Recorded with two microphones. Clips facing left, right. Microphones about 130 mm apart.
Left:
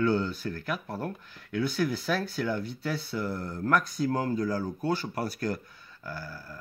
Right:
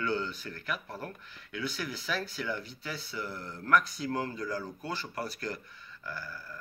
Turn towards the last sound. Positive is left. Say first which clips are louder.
# left 2 dB
turn(degrees=35)  # may be behind; listen again after turning